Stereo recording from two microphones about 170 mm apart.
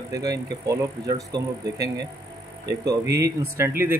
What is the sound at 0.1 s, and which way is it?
Speech, 20° right (ahead or behind).